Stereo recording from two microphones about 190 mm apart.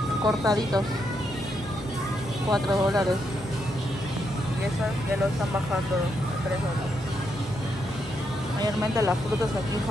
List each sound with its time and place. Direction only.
0.2 s speech: 20° right (ahead or behind)
2.5 s speech: centre (ahead or behind)
8.5 s speech: 20° right (ahead or behind)